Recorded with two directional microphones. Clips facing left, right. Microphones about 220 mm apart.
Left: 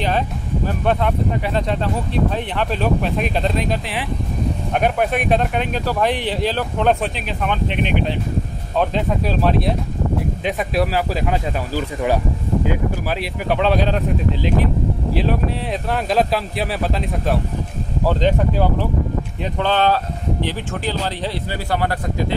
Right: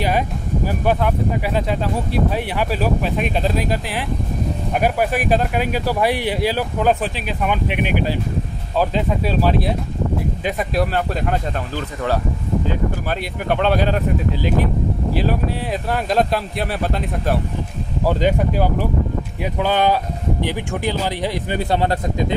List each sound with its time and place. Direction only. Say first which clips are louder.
0.7 s speech: even; 5° right (ahead or behind)
13.5 s speech: even; centre (ahead or behind)
15.9 s speech: even; centre (ahead or behind)
18.0 s a man's voice: even; 10° right (ahead or behind)